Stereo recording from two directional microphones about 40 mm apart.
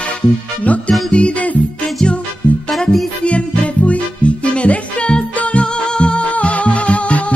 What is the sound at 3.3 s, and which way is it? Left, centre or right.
Music, left.